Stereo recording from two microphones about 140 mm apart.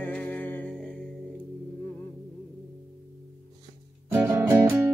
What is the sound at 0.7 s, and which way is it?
Music, centre (ahead or behind).